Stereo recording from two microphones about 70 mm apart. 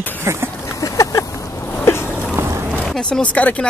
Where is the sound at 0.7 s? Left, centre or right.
Left.